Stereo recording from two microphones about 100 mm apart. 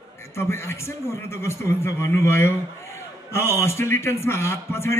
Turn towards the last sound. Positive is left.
turn(degrees=25)  # may be behind; listen again after turning